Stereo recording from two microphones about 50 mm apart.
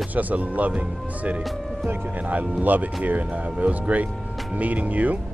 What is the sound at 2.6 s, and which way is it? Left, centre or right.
Speech, right.